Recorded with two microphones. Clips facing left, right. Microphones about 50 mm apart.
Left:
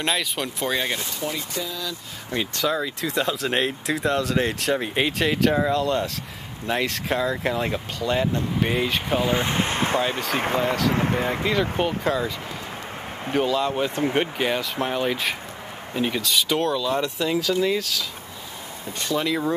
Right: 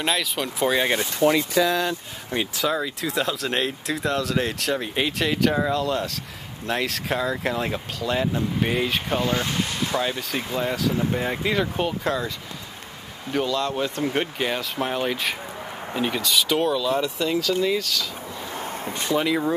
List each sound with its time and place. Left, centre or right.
0.0 s speech: centre
1.2 s speech: right
2.3 s speech: centre
9.2 s speech: centre
9.5 s speech: left
10.3 s speech: left
11.2 s speech: centre
13.3 s speech: centre
18.9 s speech: centre